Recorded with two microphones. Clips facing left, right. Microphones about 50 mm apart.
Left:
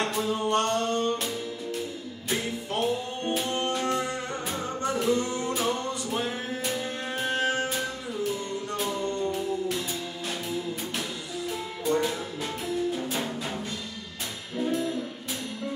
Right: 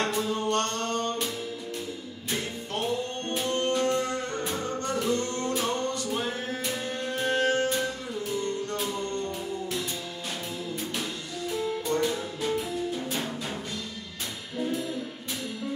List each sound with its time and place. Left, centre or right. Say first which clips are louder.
0.2 s music: left 2 dB; centre
2.2 s music: left 3 dB; centre
11.0 s music: even; centre
14.6 s music: left 3 dB; centre